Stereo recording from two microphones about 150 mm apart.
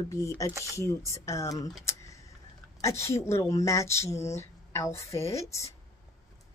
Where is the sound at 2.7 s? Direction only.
20° left (ahead or behind).